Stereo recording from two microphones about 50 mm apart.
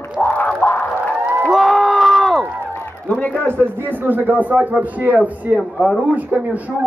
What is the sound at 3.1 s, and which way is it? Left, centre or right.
Speech, left.